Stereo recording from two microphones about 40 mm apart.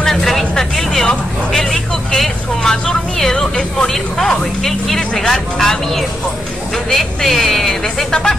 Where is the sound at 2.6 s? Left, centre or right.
Centre.